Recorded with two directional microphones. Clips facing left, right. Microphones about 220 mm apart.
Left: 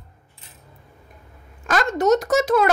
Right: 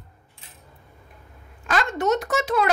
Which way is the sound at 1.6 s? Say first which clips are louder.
Left 4 dB; 40° left (ahead or behind).